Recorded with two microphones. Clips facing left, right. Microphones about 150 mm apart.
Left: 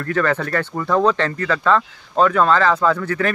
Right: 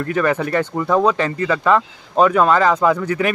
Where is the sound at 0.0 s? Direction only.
15° right (ahead or behind).